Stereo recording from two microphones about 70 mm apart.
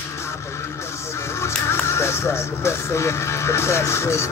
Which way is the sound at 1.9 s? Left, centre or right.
Left.